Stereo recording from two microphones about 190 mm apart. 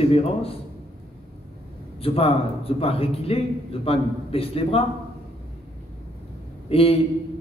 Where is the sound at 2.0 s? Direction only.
30° left (ahead or behind).